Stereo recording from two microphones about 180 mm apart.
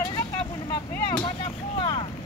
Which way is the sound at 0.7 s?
25° left (ahead or behind).